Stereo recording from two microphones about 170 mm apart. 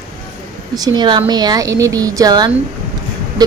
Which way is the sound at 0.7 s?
25° right (ahead or behind).